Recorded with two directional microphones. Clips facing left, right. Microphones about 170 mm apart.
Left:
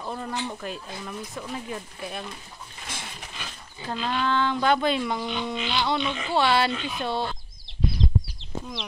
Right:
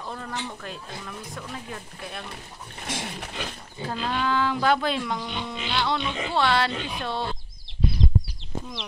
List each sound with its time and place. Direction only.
0.0 s speech: 10° left (ahead or behind)
2.9 s a sound: 80° right
3.8 s speech: 5° right (ahead or behind)